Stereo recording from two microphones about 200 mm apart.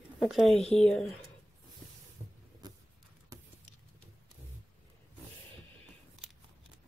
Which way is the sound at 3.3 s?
15° right (ahead or behind).